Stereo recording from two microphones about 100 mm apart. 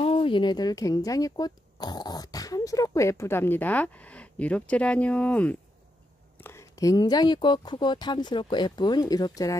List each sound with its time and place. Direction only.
0.0 s speech: 65° left (ahead or behind); by 5.6 s 15° left (ahead or behind)
6.4 s speech: 30° left (ahead or behind)